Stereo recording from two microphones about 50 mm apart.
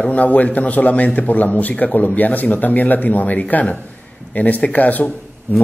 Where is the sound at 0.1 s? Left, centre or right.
Left.